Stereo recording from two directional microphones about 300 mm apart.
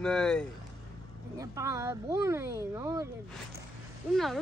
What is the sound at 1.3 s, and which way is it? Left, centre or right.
Speech, centre.